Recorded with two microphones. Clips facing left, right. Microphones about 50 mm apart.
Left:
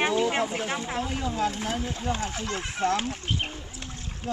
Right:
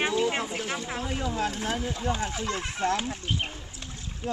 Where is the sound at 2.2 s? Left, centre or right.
Right.